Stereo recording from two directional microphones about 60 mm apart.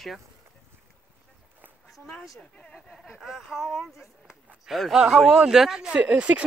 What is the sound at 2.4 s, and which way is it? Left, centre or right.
Speech, centre.